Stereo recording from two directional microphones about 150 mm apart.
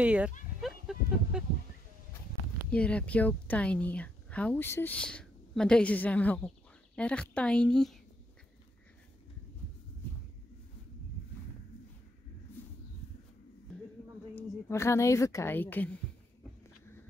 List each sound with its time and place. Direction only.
0.0 s speech: 10° right (ahead or behind)
0.6 s a sound: centre (ahead or behind)
2.7 s a woman's voice: 10° left (ahead or behind)
14.3 s a woman's voice: 20° left (ahead or behind)